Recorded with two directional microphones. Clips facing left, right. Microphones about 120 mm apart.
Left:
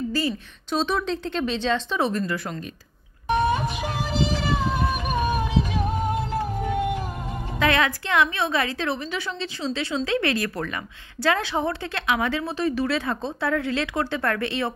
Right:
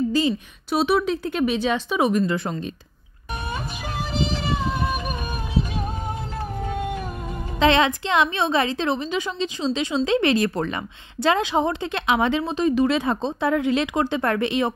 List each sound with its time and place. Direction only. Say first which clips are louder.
0.1 s a woman's voice: right 4 dB; 15° right (ahead or behind)
2.2 s speech: right 4 dB; 25° right (ahead or behind)
7.5 s speech: right 4 dB; 25° right (ahead or behind)